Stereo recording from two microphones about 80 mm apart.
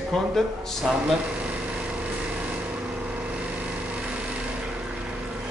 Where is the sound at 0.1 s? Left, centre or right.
Centre.